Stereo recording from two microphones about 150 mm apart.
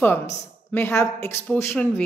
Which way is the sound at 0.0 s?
15° left (ahead or behind).